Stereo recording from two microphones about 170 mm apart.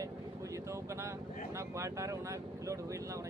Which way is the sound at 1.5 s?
15° right (ahead or behind).